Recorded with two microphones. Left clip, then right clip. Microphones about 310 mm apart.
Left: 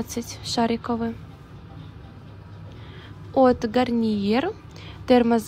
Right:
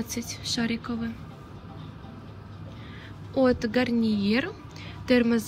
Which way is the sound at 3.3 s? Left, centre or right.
Centre.